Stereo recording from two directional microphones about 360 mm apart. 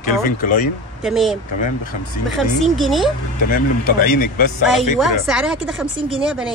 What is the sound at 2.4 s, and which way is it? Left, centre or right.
Speech, centre.